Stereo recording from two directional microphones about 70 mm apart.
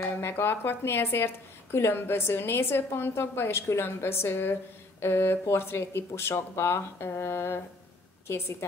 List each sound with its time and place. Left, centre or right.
0.0 s speech: left